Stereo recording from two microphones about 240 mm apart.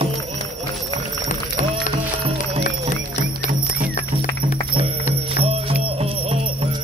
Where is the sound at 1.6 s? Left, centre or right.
Left.